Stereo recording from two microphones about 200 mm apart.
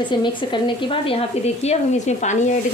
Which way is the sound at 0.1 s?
25° left (ahead or behind).